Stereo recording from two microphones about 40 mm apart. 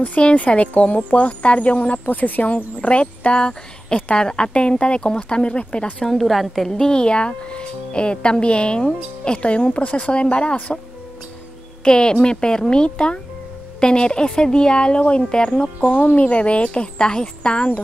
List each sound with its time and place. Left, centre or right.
0.2 s speech: left
2.0 s speech: left
6.0 s a woman's voice: centre
6.7 s speech: centre
11.8 s speech: left
16.2 s speech: left